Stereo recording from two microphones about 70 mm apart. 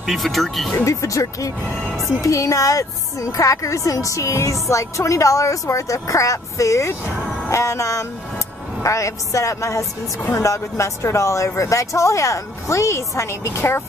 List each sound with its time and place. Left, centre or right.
0.0 s speech: centre
0.8 s a woman's voice: left